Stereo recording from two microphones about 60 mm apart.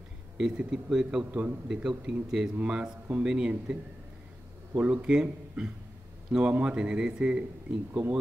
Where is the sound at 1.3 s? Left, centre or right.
Right.